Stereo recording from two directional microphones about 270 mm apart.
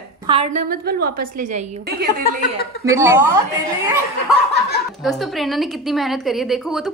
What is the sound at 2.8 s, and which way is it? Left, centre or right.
Speech, centre.